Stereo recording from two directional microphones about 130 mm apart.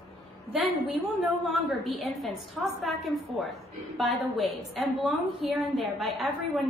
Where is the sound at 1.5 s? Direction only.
Centre (ahead or behind).